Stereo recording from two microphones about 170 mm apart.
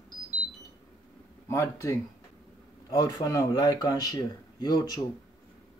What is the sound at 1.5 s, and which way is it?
Speech, 15° left (ahead or behind).